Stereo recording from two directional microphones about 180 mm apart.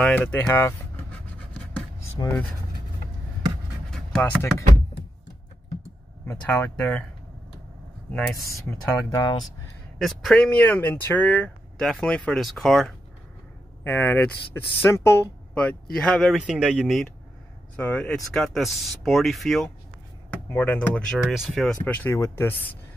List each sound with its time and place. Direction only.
0.0 s speech: 10° left (ahead or behind)
1.2 s writing: 10° left (ahead or behind)
3.9 s a sound: 5° left (ahead or behind)
6.2 s speech: 15° left (ahead or behind)
6.8 s speech: 5° left (ahead or behind)
8.1 s speech: 5° left (ahead or behind)
8.5 s speech: 20° left (ahead or behind)
9.9 s speech: centre (ahead or behind)
13.8 s speech: 10° left (ahead or behind)
21.8 s speech: 10° left (ahead or behind)